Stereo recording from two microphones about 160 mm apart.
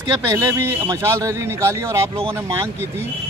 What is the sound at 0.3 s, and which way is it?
A man's voice, 20° right (ahead or behind).